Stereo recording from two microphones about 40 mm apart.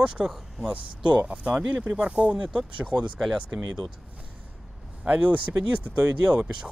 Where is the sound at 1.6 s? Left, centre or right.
Right.